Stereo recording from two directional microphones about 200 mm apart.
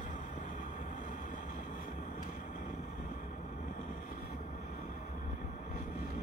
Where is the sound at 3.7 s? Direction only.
40° left (ahead or behind).